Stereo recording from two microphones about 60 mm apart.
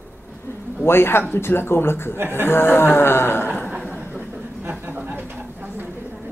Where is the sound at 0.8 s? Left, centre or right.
Left.